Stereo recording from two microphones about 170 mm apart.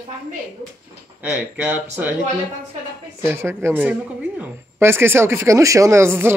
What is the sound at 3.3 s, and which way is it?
Speech, 15° right (ahead or behind).